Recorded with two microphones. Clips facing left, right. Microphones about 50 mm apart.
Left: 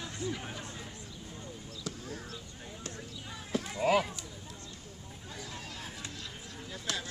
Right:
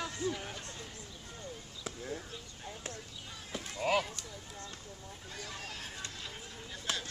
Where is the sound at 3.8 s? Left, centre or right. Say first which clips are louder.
Left 3 dB; centre.